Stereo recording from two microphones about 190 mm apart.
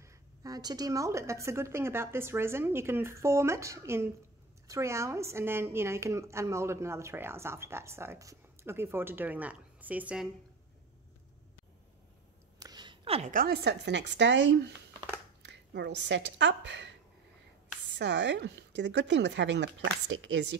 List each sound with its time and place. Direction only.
0.0 s a woman's voice: 20° right (ahead or behind)
12.5 s a sound: 20° right (ahead or behind)
13.3 s a woman's voice: 50° right (ahead or behind); by 16.9 s 70° right (ahead or behind)
17.9 s speech: 70° right (ahead or behind)